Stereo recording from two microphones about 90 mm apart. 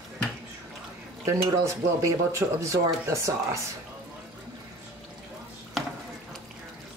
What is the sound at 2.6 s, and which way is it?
Speech, 35° right (ahead or behind).